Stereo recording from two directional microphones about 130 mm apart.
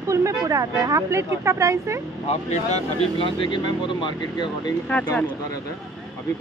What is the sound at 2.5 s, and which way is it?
Speech, 60° left (ahead or behind).